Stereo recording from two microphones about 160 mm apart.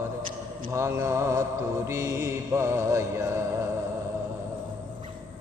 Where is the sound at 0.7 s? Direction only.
15° right (ahead or behind).